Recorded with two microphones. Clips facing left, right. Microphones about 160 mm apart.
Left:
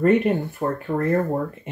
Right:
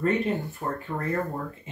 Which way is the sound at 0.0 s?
65° left (ahead or behind).